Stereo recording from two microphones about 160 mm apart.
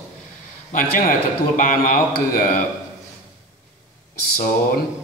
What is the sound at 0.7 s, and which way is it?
A man's voice, 60° left (ahead or behind).